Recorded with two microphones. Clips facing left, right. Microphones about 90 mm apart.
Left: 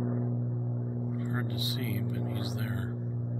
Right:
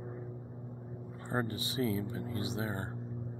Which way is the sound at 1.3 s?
35° right (ahead or behind).